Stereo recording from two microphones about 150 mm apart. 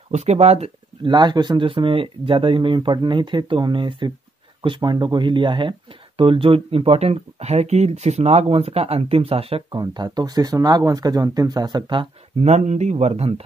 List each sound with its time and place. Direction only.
0.1 s speech: 50° right (ahead or behind)
1.0 s speech: 30° right (ahead or behind)
9.7 s speech: 25° right (ahead or behind)
12.4 s speech: 50° right (ahead or behind)